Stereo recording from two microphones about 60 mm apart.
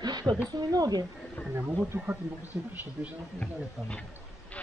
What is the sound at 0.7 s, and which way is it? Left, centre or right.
Speech, right.